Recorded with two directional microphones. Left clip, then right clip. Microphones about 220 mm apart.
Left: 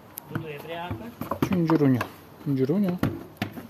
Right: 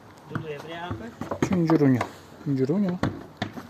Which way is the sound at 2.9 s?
50° left (ahead or behind).